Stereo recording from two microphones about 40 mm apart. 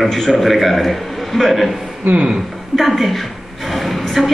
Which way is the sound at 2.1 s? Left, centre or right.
Right.